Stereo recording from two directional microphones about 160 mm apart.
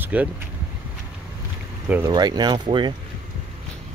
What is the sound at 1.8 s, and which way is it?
Speech, 10° right (ahead or behind).